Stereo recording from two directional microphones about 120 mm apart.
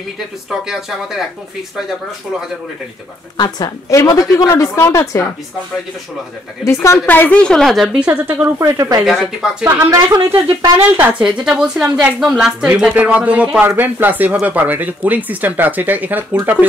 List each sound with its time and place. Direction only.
0.5 s speech: 5° right (ahead or behind)
3.3 s a woman's voice: 35° left (ahead or behind)
6.6 s speech: 25° left (ahead or behind); by 8.1 s 5° right (ahead or behind)
8.1 s speech: 15° right (ahead or behind)
8.6 s a woman's voice: 30° right (ahead or behind)
9.0 s speech: 5° right (ahead or behind)
9.7 s a woman's voice: 20° right (ahead or behind)
10.1 s speech: 35° right (ahead or behind)
11.0 s speech: 10° right (ahead or behind)
12.3 s speech: 5° right (ahead or behind)